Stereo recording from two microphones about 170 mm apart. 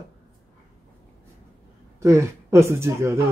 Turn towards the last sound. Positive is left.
turn(degrees=-15)  # may be behind; listen again after turning